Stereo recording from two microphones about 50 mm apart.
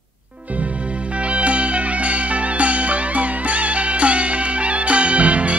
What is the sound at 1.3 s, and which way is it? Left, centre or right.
Music, right.